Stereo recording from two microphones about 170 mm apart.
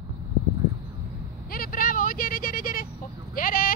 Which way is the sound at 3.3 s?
55° left (ahead or behind).